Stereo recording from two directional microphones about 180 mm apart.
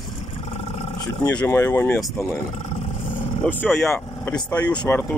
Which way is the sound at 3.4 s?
10° left (ahead or behind).